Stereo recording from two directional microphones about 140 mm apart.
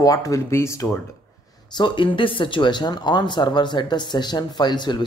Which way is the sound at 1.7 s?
35° left (ahead or behind).